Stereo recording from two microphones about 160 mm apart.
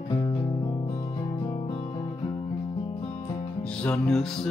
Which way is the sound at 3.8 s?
5° left (ahead or behind).